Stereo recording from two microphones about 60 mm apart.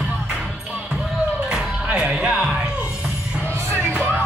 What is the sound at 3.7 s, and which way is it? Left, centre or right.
Music, right.